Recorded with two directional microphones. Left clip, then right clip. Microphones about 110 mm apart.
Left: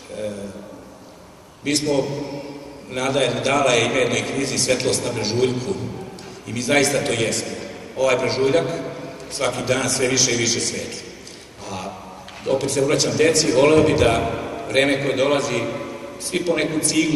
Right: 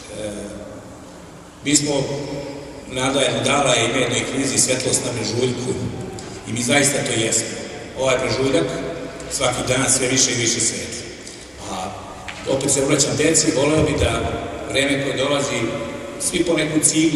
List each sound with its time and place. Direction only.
1.7 s a man's voice: 50° right (ahead or behind)
2.9 s a man's voice: 45° right (ahead or behind)
6.5 s a man's voice: 50° right (ahead or behind)
12.5 s a man's voice: 50° right (ahead or behind)